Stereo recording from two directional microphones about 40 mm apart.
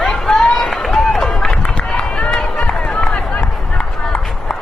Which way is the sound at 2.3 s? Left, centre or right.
Left.